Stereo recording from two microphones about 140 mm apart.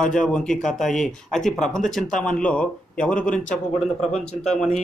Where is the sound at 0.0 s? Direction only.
5° left (ahead or behind).